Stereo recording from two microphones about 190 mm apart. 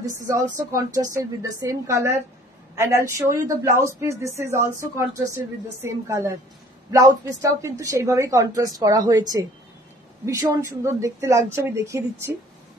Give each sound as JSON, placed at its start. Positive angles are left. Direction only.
{"t": 0.3, "sound": "speech", "side_deg": -15}